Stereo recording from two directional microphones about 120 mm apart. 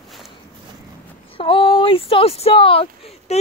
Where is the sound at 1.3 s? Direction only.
45° left (ahead or behind).